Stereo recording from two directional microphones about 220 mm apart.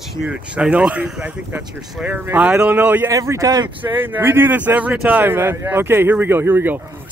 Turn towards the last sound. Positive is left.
turn(degrees=-10)  # may be behind; listen again after turning